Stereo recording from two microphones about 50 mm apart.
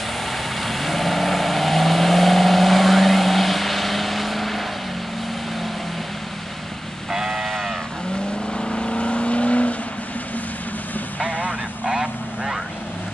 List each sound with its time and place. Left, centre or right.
0.3 s vehicle: centre
7.1 s vehicle: centre
8.5 s vehicle: centre
11.1 s vehicle: right